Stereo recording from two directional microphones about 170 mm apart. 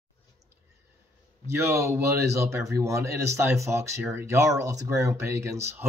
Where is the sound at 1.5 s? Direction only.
15° right (ahead or behind).